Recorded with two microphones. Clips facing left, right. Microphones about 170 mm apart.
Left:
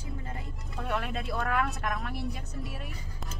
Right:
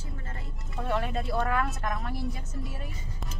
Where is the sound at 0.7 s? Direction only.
Centre (ahead or behind).